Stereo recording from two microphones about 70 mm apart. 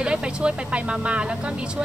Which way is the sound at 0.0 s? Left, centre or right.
Centre.